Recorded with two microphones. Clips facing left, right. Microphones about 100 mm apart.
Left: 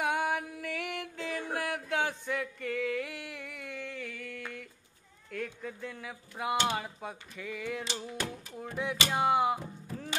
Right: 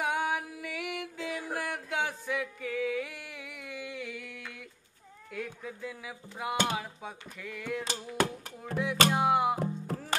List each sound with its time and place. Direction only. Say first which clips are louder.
0.0 s music: even; centre (ahead or behind)
5.3 s speech: left 1 dB; 5° right (ahead or behind)
7.8 s a sound: right 6 dB; 45° right (ahead or behind)
8.8 s speech: right 3 dB; centre (ahead or behind)
9.6 s music: right 8 dB; 60° right (ahead or behind)